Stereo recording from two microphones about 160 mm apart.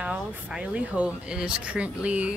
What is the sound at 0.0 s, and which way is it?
A woman's voice, 5° right (ahead or behind).